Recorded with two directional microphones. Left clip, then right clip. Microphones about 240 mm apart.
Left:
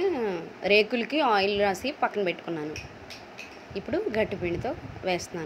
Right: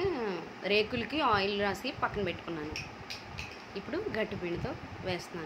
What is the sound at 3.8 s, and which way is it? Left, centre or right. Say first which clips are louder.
A woman's voice: left 7 dB; left.